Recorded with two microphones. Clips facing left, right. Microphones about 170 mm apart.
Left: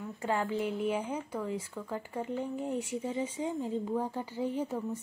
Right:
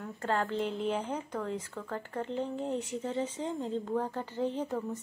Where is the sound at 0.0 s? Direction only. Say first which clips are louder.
Even; 10° left (ahead or behind).